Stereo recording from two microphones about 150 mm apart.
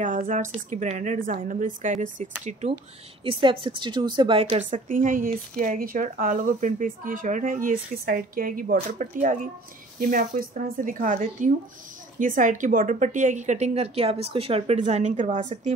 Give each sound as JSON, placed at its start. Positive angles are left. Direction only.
{"t": 0.0, "sound": "speech", "side_deg": -60}
{"t": 3.3, "sound": "a woman's voice", "side_deg": -35}
{"t": 4.6, "sound": "a woman's voice", "side_deg": -55}